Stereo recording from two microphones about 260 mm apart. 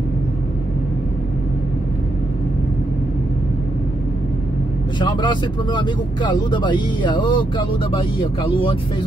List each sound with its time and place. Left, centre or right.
5.0 s speech: centre